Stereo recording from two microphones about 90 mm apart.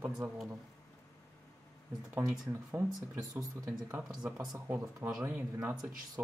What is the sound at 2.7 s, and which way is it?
Speech, 25° right (ahead or behind).